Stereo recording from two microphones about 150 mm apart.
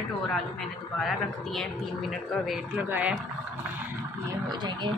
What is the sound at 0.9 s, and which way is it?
Speech, centre (ahead or behind).